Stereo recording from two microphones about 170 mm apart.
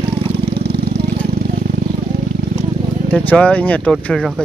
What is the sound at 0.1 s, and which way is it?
Vehicle, 35° right (ahead or behind).